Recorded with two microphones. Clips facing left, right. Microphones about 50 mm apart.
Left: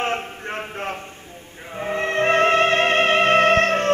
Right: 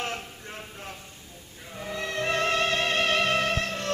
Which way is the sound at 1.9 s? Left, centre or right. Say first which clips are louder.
Left 9 dB; left.